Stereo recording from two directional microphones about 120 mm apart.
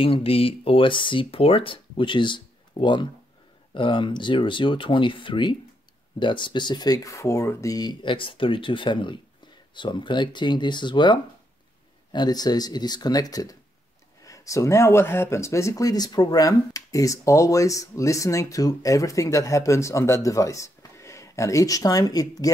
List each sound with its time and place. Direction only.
0.0 s speech: 50° left (ahead or behind); by 22.5 s 30° left (ahead or behind)